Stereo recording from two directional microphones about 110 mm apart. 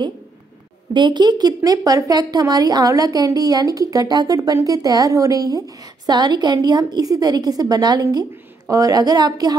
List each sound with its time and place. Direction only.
0.9 s speech: 45° right (ahead or behind)